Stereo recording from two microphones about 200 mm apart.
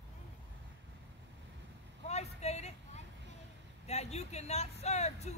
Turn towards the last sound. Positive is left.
turn(degrees=35)  # may be behind; listen again after turning